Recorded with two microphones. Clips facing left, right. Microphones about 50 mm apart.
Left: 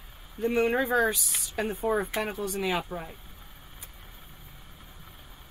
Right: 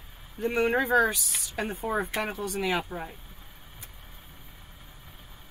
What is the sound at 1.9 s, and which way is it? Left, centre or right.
Speech, centre.